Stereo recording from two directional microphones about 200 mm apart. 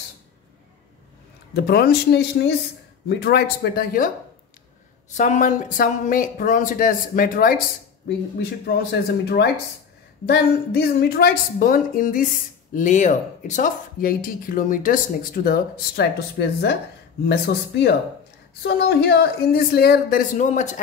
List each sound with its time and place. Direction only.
1.5 s speech: 50° left (ahead or behind)
5.1 s speech: 40° left (ahead or behind)